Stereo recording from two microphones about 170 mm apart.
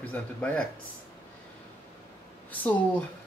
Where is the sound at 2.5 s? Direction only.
10° left (ahead or behind).